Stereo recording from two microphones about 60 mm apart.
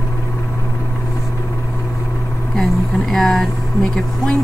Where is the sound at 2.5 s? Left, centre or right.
Centre.